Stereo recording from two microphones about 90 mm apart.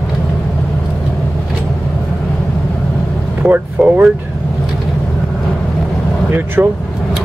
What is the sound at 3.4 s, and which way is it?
Speech, 20° right (ahead or behind).